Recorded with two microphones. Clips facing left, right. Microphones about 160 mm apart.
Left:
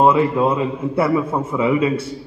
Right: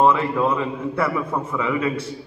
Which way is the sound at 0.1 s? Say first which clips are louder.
Left 4 dB; 25° left (ahead or behind).